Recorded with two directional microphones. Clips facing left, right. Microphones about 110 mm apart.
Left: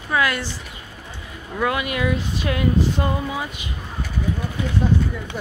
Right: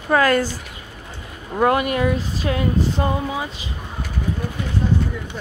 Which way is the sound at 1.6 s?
45° right (ahead or behind).